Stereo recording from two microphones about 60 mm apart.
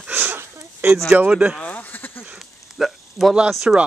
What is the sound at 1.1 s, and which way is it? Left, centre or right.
Speech, right.